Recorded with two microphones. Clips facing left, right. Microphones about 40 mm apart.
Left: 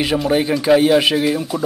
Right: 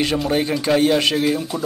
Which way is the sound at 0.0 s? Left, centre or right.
Centre.